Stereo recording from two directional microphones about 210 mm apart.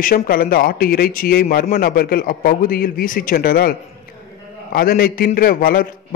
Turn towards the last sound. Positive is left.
turn(degrees=45)  # may be behind; listen again after turning